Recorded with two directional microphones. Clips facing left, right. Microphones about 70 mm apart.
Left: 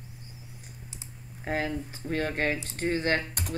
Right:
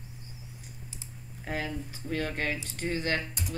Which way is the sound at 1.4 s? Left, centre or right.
Left.